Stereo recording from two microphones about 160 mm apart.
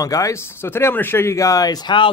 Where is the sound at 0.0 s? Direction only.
20° left (ahead or behind).